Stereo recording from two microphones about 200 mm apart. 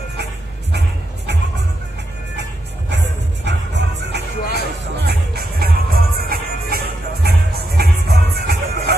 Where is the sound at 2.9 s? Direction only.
60° right (ahead or behind).